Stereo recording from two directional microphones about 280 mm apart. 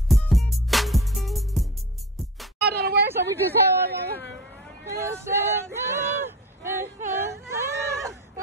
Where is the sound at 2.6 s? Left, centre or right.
Right.